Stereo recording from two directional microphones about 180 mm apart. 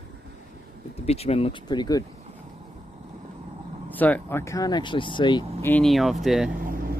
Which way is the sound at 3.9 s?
10° left (ahead or behind).